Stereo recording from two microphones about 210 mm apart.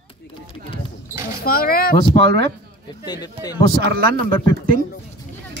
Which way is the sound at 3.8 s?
45° right (ahead or behind).